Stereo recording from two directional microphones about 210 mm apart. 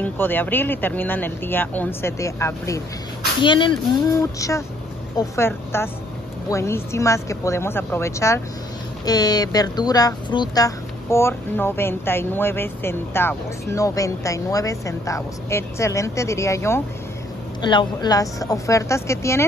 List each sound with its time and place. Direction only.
0.0 s speech: 10° left (ahead or behind)